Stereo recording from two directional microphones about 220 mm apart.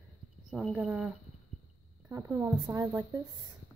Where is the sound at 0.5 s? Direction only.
Centre (ahead or behind).